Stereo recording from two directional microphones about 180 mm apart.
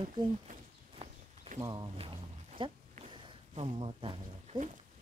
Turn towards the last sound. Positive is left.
turn(degrees=-30)  # may be behind; listen again after turning